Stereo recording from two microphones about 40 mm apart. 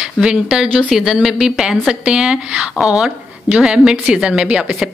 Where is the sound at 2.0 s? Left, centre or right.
Right.